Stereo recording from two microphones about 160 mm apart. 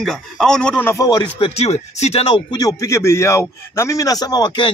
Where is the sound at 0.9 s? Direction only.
25° left (ahead or behind).